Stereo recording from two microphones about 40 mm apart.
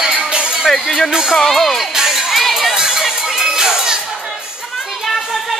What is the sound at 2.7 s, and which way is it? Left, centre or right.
Music, centre.